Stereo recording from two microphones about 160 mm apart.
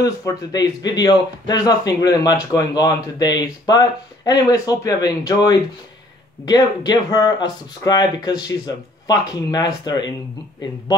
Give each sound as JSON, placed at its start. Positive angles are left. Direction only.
{"t": 0.0, "sound": "speech", "side_deg": 25}